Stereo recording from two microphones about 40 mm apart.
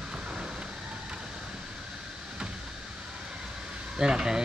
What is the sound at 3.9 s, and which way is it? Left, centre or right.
Vehicle, centre.